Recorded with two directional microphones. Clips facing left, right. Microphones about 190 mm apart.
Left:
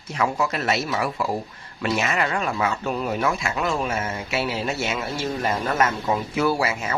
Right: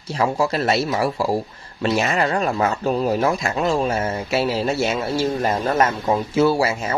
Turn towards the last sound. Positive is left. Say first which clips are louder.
# right 5 dB
turn(degrees=-30)  # may be behind; listen again after turning